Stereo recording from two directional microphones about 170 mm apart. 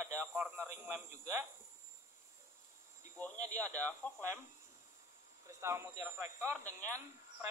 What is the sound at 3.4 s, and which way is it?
Speech, 20° right (ahead or behind).